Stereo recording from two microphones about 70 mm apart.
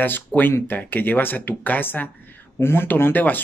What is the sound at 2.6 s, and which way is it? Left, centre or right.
Speech, left.